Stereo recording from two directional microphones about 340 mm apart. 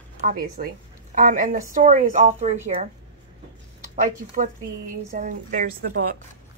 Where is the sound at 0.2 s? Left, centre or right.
Right.